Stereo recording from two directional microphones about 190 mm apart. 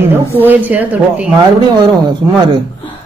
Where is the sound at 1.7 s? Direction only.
25° right (ahead or behind).